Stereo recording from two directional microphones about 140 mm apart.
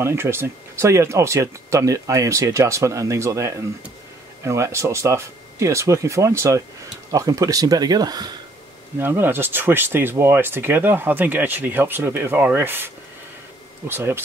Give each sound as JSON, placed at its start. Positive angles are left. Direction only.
{"t": 0.0, "sound": "speech", "side_deg": -15}
{"t": 8.9, "sound": "speech", "side_deg": -15}